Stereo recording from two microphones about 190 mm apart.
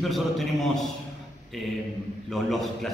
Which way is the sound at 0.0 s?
Centre (ahead or behind).